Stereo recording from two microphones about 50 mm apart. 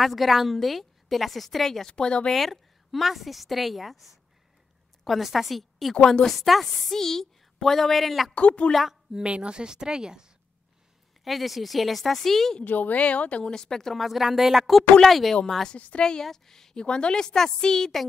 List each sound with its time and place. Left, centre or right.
0.0 s a woman's voice: centre
1.9 s speech: centre
2.3 s a woman's voice: centre
8.4 s speech: left
9.1 s speech: centre
11.2 s a woman's voice: centre
12.6 s a woman's voice: left; by 15.3 s centre
15.7 s speech: left